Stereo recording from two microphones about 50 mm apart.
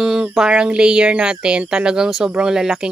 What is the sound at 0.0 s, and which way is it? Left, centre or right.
Speech, centre.